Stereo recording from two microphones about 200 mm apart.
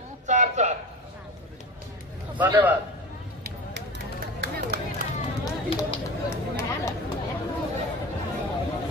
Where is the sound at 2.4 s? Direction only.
10° right (ahead or behind).